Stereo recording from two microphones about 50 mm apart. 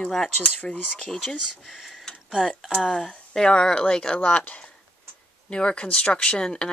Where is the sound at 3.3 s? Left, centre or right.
Centre.